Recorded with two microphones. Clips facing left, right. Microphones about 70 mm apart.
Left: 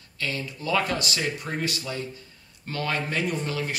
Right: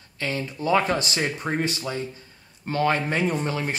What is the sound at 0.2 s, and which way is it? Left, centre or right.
Speech, right.